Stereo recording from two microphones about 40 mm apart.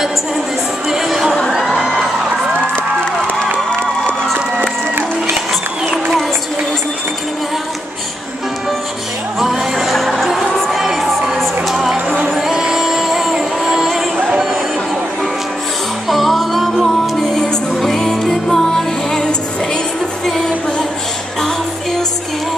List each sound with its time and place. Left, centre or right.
0.8 s music: centre
9.4 s music: centre
9.9 s music: centre
10.5 s crowd: centre
10.8 s crowd: centre
11.7 s music: centre
16.1 s music: centre
17.2 s music: centre